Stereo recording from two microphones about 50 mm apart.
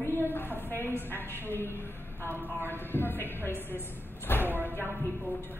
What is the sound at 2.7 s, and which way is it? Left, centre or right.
Speech, left.